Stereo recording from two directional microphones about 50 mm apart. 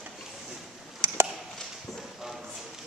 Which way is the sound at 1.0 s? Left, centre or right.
Right.